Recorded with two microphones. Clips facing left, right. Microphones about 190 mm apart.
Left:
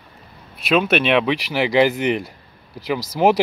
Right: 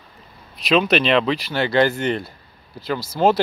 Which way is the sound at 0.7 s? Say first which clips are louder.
Even; 5° left (ahead or behind).